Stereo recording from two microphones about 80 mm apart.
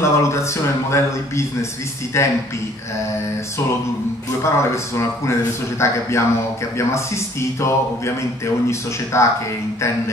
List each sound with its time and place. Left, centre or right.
0.0 s speech: left
4.4 s speech: left